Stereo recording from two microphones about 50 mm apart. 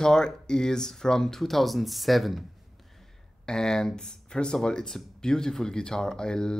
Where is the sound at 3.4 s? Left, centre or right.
Centre.